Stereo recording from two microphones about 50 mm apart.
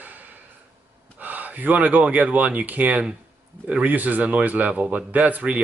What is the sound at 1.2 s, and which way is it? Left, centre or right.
Speech, right.